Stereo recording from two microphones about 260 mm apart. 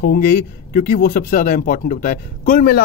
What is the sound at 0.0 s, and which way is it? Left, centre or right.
Speech, left.